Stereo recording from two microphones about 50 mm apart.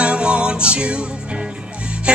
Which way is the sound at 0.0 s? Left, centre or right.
Right.